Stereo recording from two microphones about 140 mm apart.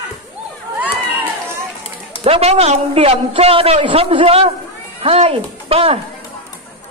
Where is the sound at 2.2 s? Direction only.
50° right (ahead or behind).